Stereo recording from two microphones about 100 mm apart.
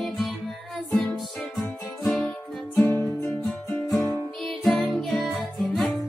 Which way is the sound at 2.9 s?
20° left (ahead or behind).